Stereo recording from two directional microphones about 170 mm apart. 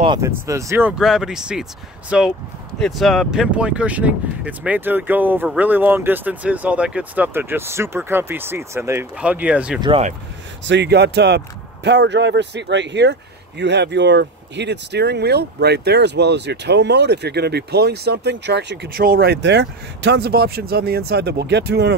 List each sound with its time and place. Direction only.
0.5 s speech: 15° right (ahead or behind)
9.8 s speech: 30° right (ahead or behind)
10.6 s speech: 90° right